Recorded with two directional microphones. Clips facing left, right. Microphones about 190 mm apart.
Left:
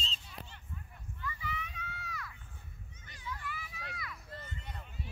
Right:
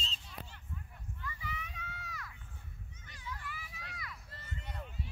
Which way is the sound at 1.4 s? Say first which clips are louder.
Left 3 dB; 40° right (ahead or behind).